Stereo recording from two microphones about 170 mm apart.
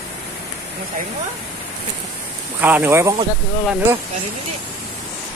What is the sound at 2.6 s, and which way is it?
Speech, 10° right (ahead or behind).